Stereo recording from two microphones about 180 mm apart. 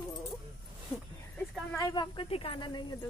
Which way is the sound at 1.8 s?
25° left (ahead or behind).